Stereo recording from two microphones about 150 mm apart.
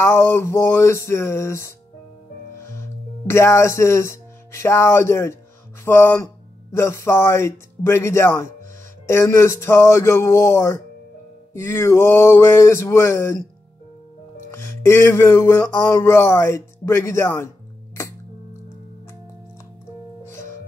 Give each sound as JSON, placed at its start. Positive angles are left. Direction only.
{"t": 0.0, "sound": "music", "side_deg": 15}
{"t": 3.3, "sound": "speech", "side_deg": 20}
{"t": 5.9, "sound": "music", "side_deg": 15}
{"t": 14.5, "sound": "music", "side_deg": 15}